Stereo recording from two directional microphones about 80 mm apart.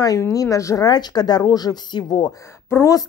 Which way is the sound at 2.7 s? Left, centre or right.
Left.